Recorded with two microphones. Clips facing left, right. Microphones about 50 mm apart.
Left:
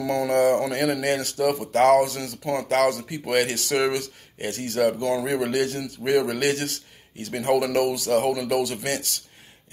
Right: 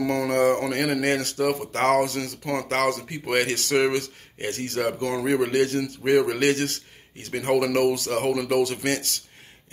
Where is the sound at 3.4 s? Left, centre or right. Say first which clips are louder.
Right 2 dB; right.